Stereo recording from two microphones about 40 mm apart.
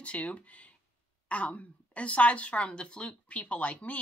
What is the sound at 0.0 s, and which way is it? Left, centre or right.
Speech, left.